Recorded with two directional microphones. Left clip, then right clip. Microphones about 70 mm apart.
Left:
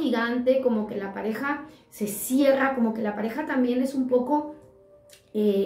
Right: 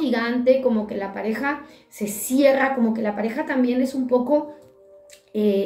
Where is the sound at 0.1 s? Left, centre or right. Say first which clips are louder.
Right 5 dB; left.